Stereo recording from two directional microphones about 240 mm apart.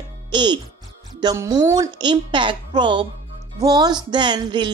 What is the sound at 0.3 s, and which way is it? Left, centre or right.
A woman's voice, centre.